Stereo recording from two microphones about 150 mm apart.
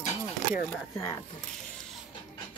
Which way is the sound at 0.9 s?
20° left (ahead or behind).